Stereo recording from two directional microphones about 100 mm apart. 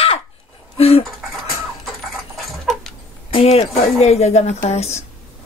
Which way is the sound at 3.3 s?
80° left.